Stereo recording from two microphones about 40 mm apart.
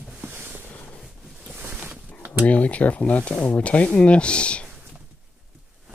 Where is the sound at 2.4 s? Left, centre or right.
Left.